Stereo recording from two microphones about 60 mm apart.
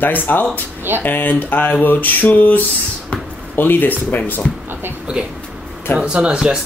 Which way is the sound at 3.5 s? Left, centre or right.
Left.